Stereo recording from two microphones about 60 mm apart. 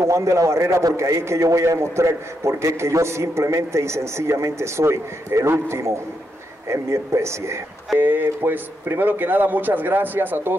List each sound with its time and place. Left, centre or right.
0.0 s a man's voice: right
8.0 s speech: right